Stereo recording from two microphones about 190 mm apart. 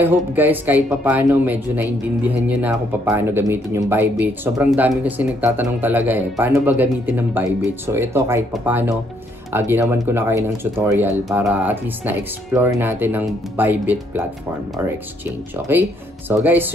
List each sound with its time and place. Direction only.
0.0 s speech: 10° right (ahead or behind)
16.3 s speech: 10° right (ahead or behind)